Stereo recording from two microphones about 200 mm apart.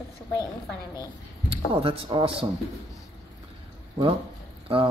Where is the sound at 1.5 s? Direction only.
25° right (ahead or behind).